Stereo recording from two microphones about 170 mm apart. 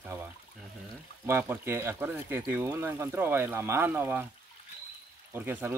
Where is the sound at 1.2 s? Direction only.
15° right (ahead or behind).